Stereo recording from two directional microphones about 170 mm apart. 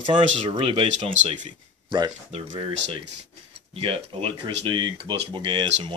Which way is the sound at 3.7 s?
35° right (ahead or behind).